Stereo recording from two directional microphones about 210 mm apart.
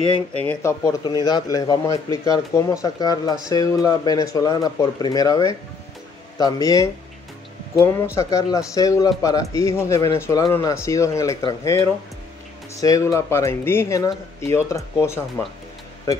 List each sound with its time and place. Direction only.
0.5 s a man's voice: 15° left (ahead or behind)